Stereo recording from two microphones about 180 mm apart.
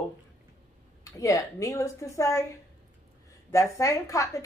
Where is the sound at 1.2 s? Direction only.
15° left (ahead or behind).